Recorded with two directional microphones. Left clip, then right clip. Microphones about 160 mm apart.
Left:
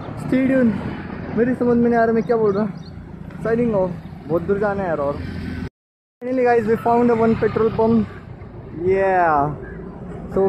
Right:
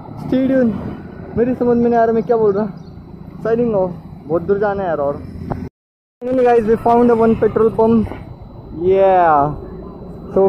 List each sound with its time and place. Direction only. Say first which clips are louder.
0.1 s speech: right 3 dB; 15° left (ahead or behind)
6.4 s speech: right 4 dB; centre (ahead or behind)